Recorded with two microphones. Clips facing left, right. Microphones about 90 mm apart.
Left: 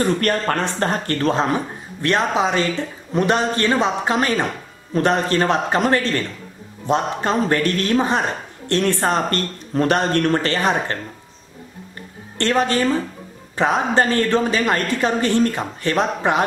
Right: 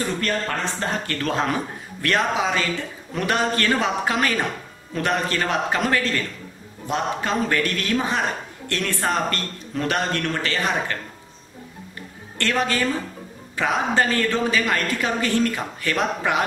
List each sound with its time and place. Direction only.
0.0 s speech: 55° left (ahead or behind); by 1.3 s 40° left (ahead or behind)
1.3 s a man's voice: 25° left (ahead or behind)
12.4 s speech: 30° left (ahead or behind)